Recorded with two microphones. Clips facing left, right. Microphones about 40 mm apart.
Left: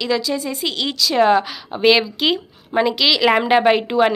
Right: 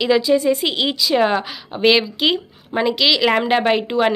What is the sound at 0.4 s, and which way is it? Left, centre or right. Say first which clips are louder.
Speech: right 8 dB; right.